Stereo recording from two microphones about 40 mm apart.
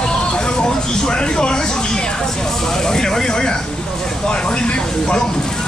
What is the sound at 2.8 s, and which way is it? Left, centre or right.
Speech, centre.